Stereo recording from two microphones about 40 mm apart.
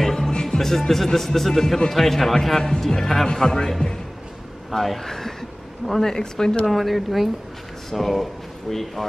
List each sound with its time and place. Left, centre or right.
0.0 s speech: centre
4.6 s speech: centre
6.6 s a man's voice: centre